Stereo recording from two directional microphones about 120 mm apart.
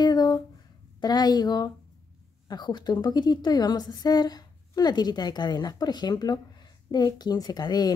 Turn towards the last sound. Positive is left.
turn(degrees=35)  # may be behind; listen again after turning